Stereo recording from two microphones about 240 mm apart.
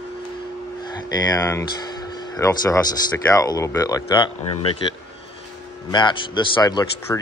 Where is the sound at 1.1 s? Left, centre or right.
Centre.